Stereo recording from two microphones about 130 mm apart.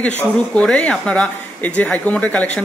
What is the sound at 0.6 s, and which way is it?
Speech, 10° left (ahead or behind).